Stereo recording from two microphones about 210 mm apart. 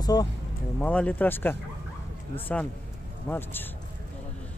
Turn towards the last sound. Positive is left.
turn(degrees=10)  # may be behind; listen again after turning